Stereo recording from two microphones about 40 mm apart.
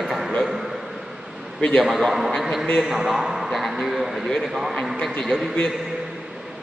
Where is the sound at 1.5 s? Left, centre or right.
Left.